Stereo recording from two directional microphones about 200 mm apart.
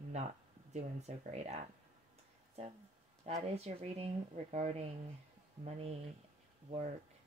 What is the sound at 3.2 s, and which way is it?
Speech, 30° right (ahead or behind).